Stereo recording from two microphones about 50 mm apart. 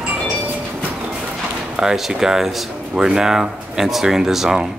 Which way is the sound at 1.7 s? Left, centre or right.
Centre.